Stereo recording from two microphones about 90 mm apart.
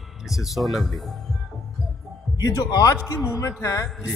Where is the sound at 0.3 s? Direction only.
Centre (ahead or behind).